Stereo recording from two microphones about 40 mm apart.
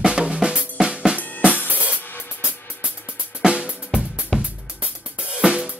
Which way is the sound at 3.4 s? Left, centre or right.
Right.